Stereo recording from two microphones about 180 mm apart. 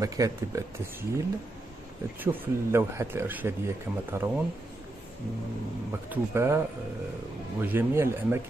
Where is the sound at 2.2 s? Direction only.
15° right (ahead or behind).